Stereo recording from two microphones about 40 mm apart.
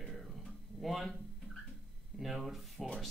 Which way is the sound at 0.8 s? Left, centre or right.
Centre.